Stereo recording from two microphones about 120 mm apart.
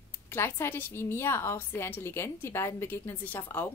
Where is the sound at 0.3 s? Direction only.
20° left (ahead or behind).